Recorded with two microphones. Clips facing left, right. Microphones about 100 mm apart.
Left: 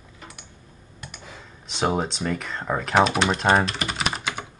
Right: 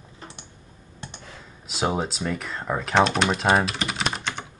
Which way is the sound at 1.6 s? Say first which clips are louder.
Left 1 dB; centre (ahead or behind).